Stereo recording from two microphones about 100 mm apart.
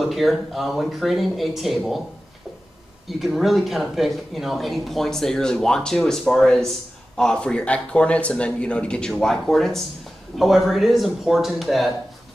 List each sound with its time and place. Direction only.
0.0 s speech: centre (ahead or behind)
3.1 s speech: centre (ahead or behind)